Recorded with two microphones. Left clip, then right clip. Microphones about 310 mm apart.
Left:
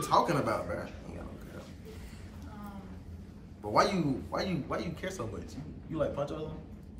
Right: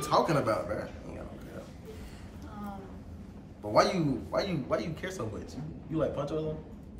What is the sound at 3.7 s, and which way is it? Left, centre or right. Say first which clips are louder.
A man's voice: right 2 dB; centre.